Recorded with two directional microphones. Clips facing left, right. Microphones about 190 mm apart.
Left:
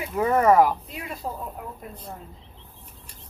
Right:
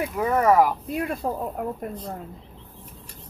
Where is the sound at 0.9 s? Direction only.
55° right (ahead or behind).